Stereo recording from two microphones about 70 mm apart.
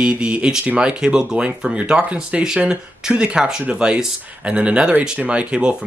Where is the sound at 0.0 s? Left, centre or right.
Centre.